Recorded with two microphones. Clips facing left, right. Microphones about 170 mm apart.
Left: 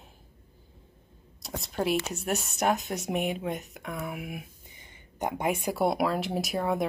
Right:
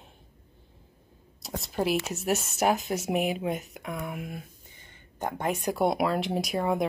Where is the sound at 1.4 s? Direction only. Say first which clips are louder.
Right 1 dB; centre (ahead or behind).